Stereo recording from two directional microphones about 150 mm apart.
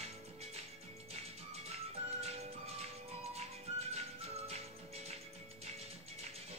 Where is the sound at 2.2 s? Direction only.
45° right (ahead or behind).